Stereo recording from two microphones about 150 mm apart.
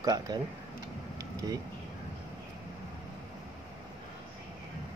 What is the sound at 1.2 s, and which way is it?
Air conditioning, 25° right (ahead or behind).